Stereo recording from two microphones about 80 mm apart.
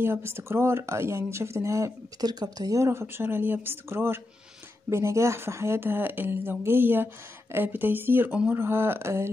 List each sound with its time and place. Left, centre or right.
0.0 s speech: right
2.2 s speech: right
2.8 s speech: right